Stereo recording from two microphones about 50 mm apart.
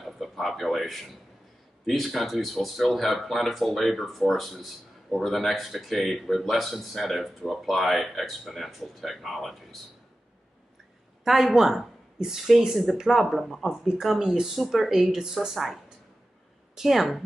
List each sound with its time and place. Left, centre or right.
0.0 s speech: centre
11.2 s speech: centre
13.7 s speech: centre